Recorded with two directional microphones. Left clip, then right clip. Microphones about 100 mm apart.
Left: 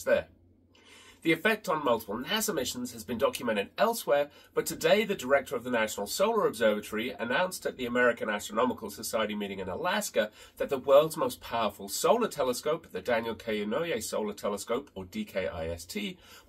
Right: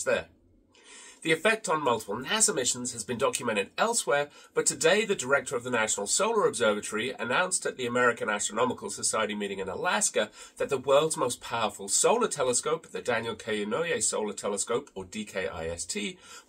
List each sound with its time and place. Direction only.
1.2 s speech: 20° right (ahead or behind)